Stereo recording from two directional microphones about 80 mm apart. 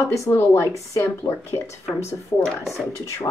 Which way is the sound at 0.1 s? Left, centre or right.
Left.